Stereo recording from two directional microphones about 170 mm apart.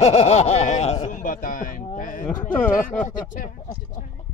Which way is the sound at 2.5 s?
10° left (ahead or behind).